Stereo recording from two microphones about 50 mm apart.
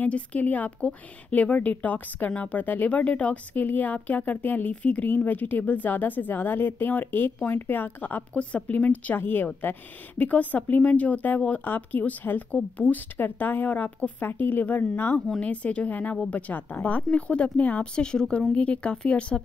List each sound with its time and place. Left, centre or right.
0.0 s a woman's voice: left
15.4 s speech: left